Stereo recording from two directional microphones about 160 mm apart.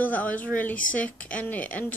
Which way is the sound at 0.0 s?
10° left (ahead or behind).